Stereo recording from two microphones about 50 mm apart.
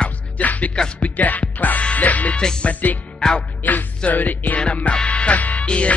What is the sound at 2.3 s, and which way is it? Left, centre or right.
Music, centre.